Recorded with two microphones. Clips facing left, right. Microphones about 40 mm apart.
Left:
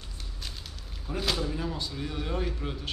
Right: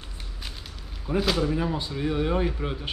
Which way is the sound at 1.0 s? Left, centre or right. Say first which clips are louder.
Right 6 dB; centre.